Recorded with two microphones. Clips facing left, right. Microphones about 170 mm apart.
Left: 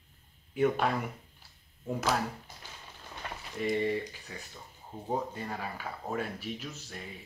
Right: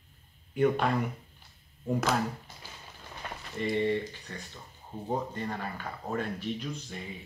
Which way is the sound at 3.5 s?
5° left (ahead or behind).